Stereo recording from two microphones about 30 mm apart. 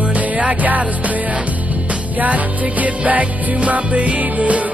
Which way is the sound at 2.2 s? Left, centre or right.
Right.